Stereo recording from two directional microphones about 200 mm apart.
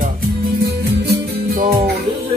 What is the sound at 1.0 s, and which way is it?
Music, 50° right (ahead or behind).